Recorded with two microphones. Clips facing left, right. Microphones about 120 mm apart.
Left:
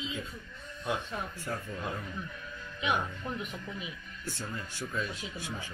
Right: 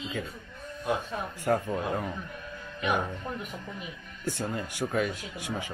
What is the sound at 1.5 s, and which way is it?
Speech, 75° right (ahead or behind).